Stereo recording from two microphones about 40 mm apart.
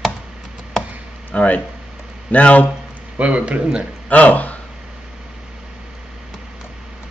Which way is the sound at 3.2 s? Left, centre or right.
Right.